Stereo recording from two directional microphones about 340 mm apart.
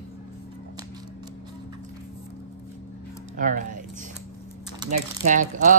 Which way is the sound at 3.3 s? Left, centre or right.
Right.